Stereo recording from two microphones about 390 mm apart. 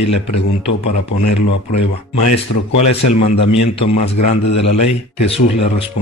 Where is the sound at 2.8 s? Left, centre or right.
Left.